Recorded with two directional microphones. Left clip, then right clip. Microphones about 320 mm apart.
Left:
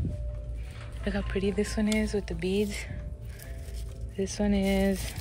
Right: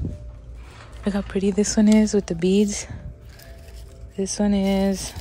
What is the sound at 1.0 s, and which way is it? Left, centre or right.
Speech, centre.